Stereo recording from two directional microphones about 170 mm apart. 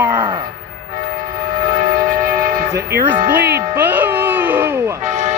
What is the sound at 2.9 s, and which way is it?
Speech, 55° right (ahead or behind).